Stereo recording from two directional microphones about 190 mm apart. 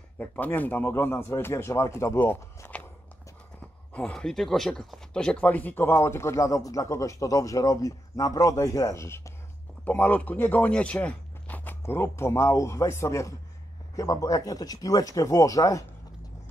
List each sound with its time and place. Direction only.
0.2 s speech: 10° left (ahead or behind)
3.9 s speech: 5° left (ahead or behind)